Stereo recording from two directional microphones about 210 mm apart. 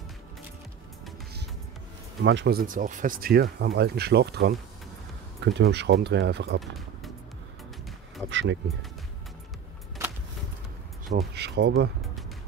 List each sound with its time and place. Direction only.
2.2 s speech: 55° right (ahead or behind)
8.3 s speech: 60° right (ahead or behind)
11.1 s speech: 50° right (ahead or behind)